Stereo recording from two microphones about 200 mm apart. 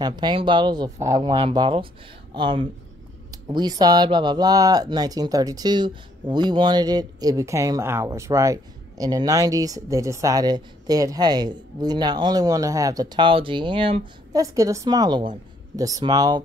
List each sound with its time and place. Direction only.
0.0 s speech: 20° right (ahead or behind)
14.4 s a woman's voice: 15° right (ahead or behind)